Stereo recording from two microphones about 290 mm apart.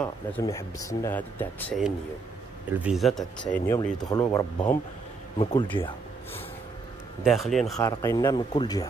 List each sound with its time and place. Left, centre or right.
0.0 s speech: centre
7.2 s speech: centre
7.8 s speech: centre